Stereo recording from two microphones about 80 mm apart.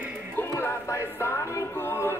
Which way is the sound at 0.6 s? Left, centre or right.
Left.